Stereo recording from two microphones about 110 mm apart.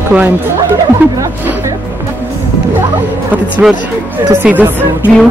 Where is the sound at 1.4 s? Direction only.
20° right (ahead or behind).